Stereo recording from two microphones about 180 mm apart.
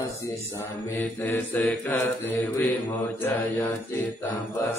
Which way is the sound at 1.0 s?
10° left (ahead or behind).